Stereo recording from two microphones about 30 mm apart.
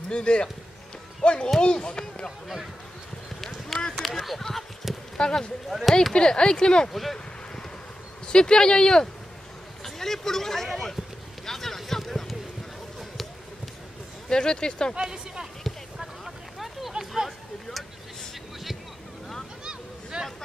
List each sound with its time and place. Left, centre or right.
0.1 s speech: left
3.3 s a sound: centre
3.9 s speech: centre
5.1 s speech: left
5.7 s speech: centre
6.1 s speech: left
6.9 s speech: centre
8.3 s speech: left
9.8 s speech: centre
11.4 s a sound: centre
14.3 s speech: left
16.5 s a sound: centre
19.6 s a sound: right